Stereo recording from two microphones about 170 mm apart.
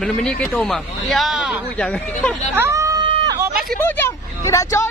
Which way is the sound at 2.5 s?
15° right (ahead or behind).